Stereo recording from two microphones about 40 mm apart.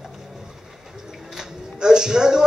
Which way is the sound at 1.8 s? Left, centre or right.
Centre.